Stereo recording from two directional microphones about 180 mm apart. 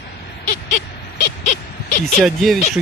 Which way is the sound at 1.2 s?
45° left (ahead or behind).